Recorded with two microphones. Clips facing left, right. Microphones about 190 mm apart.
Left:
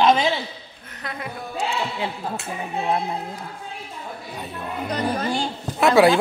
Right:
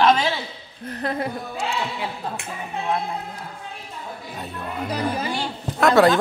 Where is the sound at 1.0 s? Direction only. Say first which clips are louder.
Right 7 dB; 35° right (ahead or behind).